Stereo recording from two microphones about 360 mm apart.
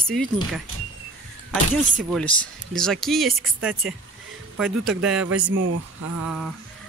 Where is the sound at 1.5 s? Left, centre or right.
Centre.